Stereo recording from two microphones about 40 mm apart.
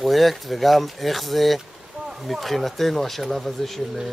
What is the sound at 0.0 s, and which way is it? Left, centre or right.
Speech, centre.